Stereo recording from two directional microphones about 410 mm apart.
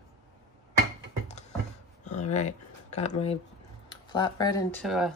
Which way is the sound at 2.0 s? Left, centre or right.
Centre.